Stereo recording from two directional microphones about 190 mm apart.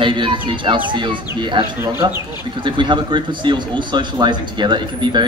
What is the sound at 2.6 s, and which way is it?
A man's voice, 25° right (ahead or behind).